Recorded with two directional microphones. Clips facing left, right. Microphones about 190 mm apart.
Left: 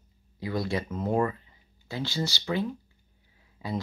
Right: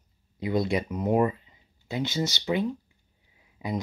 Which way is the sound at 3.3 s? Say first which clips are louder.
Right 2 dB; 15° right (ahead or behind).